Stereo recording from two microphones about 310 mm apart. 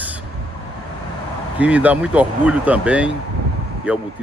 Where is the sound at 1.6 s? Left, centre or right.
Centre.